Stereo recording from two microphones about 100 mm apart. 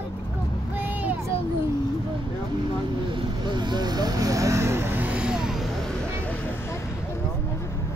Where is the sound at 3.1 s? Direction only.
50° right (ahead or behind); by 5.6 s 5° right (ahead or behind).